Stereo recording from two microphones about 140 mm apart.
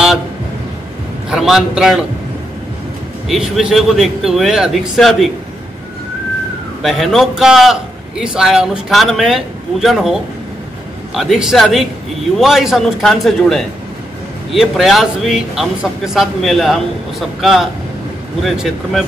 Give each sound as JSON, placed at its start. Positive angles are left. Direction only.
{"t": 1.3, "sound": "a man's voice", "side_deg": -5}
{"t": 3.3, "sound": "a man's voice", "side_deg": 0}
{"t": 6.8, "sound": "a man's voice", "side_deg": 0}